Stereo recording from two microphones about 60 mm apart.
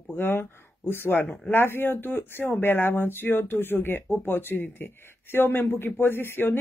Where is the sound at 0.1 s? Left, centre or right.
Left.